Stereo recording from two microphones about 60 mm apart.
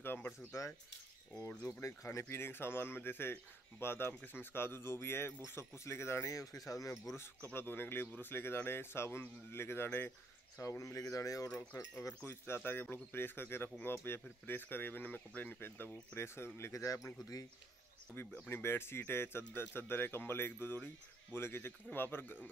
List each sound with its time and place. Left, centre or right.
0.0 s a sound: left
0.5 s speech: left
2.2 s speech: left
4.1 s speech: left
6.2 s speech: left
7.5 s speech: left
10.6 s speech: left
12.3 s speech: left
16.7 s speech: left
18.1 s speech: left